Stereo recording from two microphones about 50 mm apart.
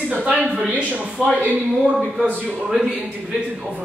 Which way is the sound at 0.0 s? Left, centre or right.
Right.